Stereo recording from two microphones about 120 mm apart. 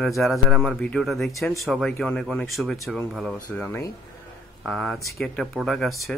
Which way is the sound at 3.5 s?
15° left (ahead or behind).